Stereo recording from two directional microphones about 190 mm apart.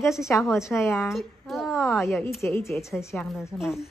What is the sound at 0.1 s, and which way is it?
Speech, 15° left (ahead or behind).